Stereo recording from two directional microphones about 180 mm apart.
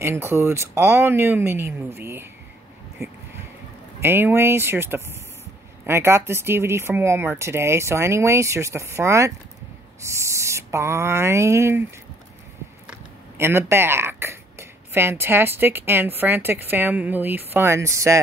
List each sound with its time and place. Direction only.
0.0 s speech: 15° right (ahead or behind)
13.4 s speech: 15° right (ahead or behind)